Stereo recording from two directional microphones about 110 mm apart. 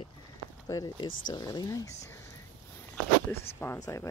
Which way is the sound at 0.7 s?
35° left (ahead or behind).